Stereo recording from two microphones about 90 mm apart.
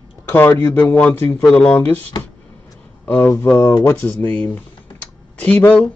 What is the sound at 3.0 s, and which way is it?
Speech, 25° left (ahead or behind).